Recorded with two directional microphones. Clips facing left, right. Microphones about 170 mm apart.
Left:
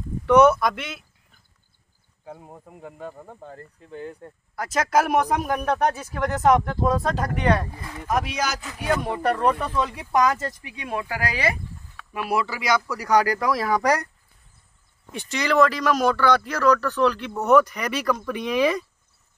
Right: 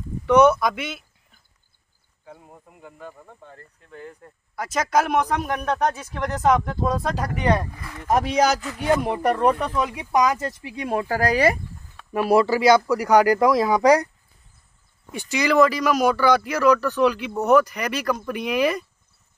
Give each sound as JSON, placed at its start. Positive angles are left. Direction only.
{"t": 0.3, "sound": "speech", "side_deg": 0}
{"t": 2.2, "sound": "speech", "side_deg": 30}
{"t": 4.6, "sound": "speech", "side_deg": 0}
{"t": 8.1, "sound": "speech", "side_deg": -30}
{"t": 9.3, "sound": "speech", "side_deg": -10}
{"t": 10.6, "sound": "speech", "side_deg": -35}
{"t": 15.1, "sound": "speech", "side_deg": -5}